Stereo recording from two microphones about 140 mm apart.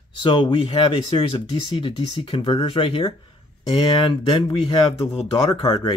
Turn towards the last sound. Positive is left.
turn(degrees=45)  # may be behind; listen again after turning